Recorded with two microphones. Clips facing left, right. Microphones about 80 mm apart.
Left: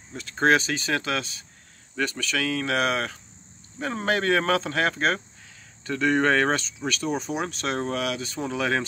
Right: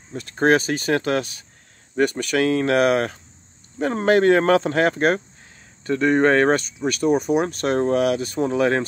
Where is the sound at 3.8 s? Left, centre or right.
Right.